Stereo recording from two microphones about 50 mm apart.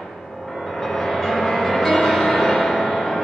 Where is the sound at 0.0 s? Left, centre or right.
Centre.